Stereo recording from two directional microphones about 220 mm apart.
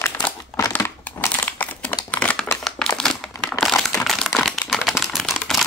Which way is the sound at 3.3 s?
15° left (ahead or behind).